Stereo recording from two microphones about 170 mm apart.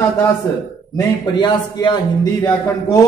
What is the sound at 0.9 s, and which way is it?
A man's voice, 25° left (ahead or behind).